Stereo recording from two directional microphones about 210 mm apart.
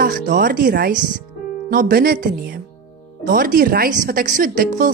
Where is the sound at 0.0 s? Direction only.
40° right (ahead or behind).